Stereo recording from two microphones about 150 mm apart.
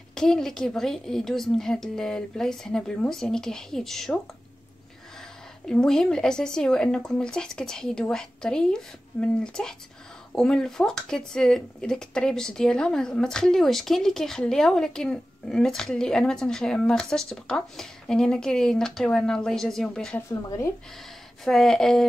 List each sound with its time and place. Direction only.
0.1 s speech: 5° left (ahead or behind)
5.7 s speech: 5° left (ahead or behind)
20.4 s speech: 20° left (ahead or behind)
21.5 s speech: 5° left (ahead or behind)